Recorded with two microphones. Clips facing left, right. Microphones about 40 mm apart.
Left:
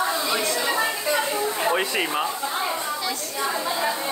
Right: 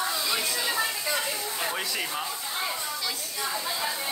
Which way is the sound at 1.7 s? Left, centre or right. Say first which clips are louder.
Left 7 dB; left.